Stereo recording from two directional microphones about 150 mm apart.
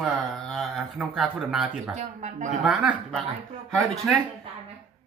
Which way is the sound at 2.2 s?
55° right (ahead or behind).